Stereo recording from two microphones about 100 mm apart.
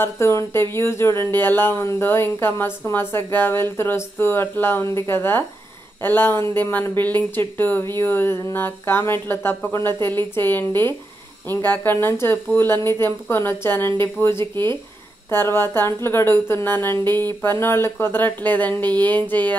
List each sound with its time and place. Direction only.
0.0 s speech: 30° left (ahead or behind)